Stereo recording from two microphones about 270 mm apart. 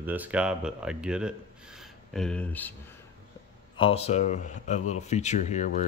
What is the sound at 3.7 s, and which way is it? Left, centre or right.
Speech, left.